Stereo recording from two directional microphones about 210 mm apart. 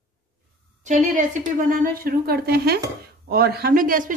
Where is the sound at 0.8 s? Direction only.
35° right (ahead or behind).